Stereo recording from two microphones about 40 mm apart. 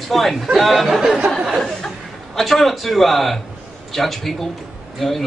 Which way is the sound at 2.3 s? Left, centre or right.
Centre.